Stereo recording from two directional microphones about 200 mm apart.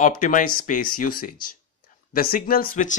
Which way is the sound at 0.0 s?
40° left (ahead or behind).